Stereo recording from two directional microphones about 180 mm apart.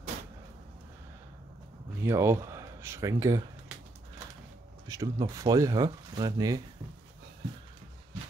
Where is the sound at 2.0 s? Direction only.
15° right (ahead or behind).